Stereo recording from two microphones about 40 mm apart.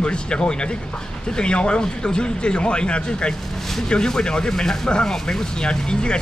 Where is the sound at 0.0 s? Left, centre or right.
Left.